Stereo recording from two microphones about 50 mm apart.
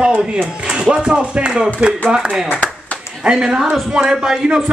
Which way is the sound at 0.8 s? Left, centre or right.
Centre.